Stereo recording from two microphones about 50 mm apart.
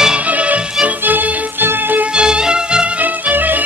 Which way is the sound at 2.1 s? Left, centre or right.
Centre.